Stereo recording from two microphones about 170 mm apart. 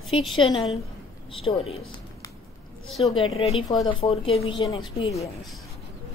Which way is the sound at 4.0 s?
35° left (ahead or behind).